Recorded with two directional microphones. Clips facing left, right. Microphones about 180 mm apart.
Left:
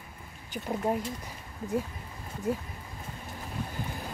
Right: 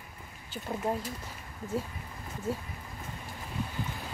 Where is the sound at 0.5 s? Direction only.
15° left (ahead or behind).